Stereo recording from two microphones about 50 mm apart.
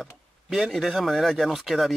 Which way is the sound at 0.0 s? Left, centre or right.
Centre.